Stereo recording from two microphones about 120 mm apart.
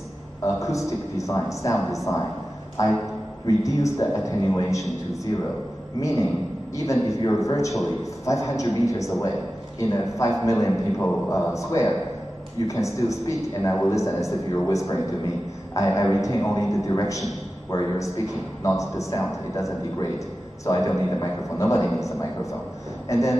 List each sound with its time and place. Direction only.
0.6 s a man's voice: 25° left (ahead or behind)
5.9 s a man's voice: 30° left (ahead or behind)
20.6 s a man's voice: 25° left (ahead or behind)
23.0 s a sound: 25° left (ahead or behind)